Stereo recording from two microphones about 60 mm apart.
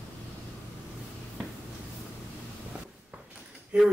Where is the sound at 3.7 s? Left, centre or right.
Centre.